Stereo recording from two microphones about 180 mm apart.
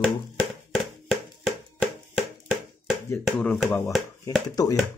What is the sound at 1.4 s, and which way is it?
Hands, centre (ahead or behind).